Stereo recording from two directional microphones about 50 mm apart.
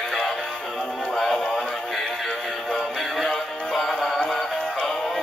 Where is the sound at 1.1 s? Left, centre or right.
Centre.